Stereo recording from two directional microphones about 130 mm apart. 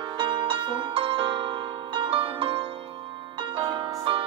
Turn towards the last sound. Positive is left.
turn(degrees=-40)  # may be behind; listen again after turning